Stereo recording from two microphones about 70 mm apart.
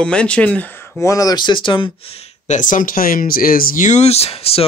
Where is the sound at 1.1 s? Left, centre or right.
Left.